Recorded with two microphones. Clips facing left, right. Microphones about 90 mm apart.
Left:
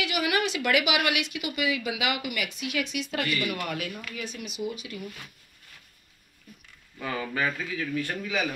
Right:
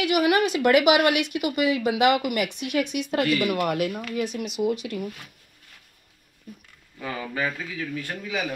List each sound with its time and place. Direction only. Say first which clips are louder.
0.0 s speech: right 6 dB; 45° right (ahead or behind)
4.2 s speech: right 8 dB; 70° right (ahead or behind)
7.0 s a man's voice: even; 20° right (ahead or behind)